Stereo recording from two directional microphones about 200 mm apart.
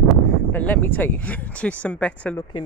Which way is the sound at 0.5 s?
10° left (ahead or behind).